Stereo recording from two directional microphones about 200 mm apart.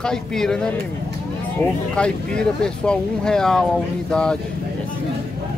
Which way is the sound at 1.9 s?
5° left (ahead or behind).